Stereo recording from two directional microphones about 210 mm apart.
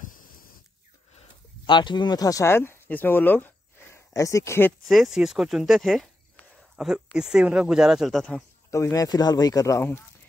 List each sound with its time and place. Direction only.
1.7 s speech: 20° left (ahead or behind)
4.8 s speech: centre (ahead or behind)
8.6 s speech: 15° left (ahead or behind)